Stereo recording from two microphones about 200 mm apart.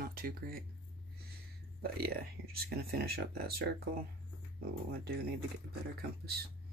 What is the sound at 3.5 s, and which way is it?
Speech, 50° right (ahead or behind).